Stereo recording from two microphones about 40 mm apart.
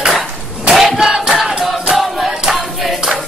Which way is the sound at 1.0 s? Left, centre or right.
Centre.